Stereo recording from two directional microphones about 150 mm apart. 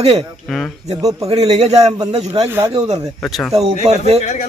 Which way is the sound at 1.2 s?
45° right (ahead or behind).